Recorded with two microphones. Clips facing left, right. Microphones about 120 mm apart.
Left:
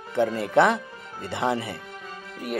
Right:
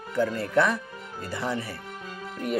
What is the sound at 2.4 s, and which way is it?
Speech, 5° left (ahead or behind).